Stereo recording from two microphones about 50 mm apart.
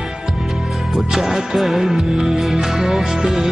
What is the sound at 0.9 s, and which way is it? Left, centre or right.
Music, centre.